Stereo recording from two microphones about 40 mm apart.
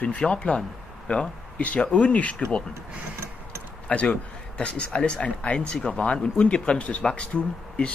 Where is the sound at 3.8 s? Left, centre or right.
Left.